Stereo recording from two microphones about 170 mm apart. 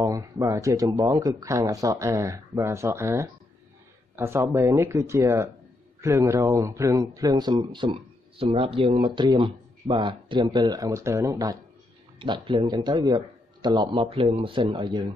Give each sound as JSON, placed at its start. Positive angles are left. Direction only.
{"t": 0.0, "sound": "speech", "side_deg": -20}